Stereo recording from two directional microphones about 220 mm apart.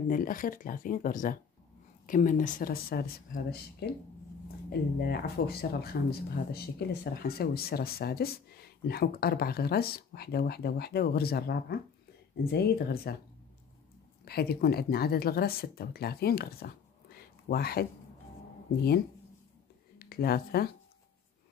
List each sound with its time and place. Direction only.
0.1 s speech: 40° left (ahead or behind)
14.2 s speech: 45° left (ahead or behind)
20.0 s speech: 45° left (ahead or behind)